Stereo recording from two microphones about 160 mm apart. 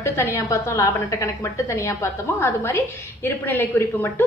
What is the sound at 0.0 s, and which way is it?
A woman's voice, 15° left (ahead or behind).